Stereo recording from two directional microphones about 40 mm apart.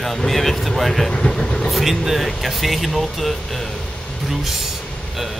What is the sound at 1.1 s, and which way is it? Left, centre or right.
Speech, centre.